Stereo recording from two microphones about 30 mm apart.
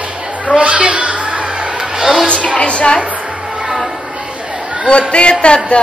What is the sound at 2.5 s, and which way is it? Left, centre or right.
Speech, left.